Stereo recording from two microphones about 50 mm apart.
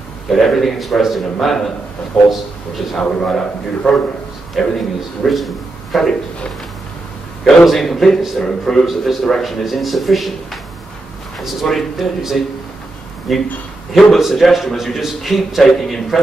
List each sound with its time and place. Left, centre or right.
0.3 s a man's voice: centre
2.1 s a man's voice: centre
7.6 s a man's voice: centre